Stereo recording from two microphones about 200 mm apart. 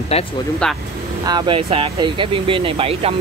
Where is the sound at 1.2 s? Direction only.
20° right (ahead or behind).